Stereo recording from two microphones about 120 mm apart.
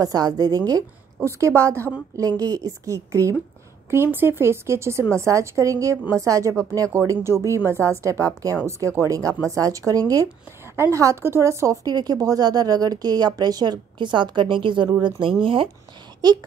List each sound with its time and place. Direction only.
0.0 s a woman's voice: 30° right (ahead or behind)